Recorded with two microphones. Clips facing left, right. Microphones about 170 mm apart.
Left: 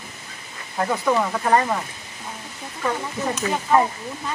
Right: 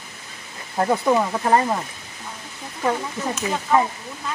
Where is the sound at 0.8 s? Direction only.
25° right (ahead or behind).